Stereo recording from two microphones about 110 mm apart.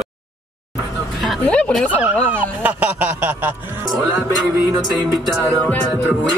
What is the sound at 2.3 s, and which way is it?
Music, 15° right (ahead or behind).